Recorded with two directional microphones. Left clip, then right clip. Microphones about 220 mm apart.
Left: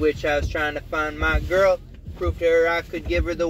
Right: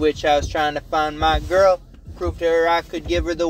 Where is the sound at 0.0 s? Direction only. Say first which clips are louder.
Right 4 dB; 15° right (ahead or behind).